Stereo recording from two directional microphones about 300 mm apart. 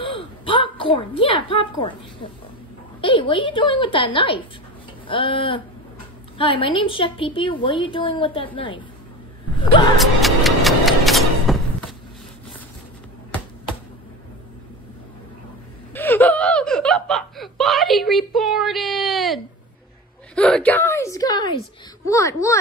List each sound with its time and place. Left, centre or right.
0.0 s a sound: centre
3.0 s a woman's voice: centre
9.9 s music: centre
15.9 s laughter: centre
20.3 s a woman's voice: centre